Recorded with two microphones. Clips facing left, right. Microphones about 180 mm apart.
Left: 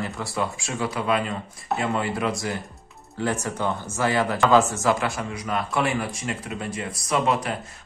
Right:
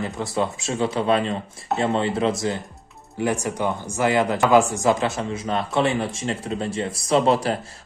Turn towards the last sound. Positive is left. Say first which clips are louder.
# right 5 dB
turn(degrees=-30)  # may be behind; listen again after turning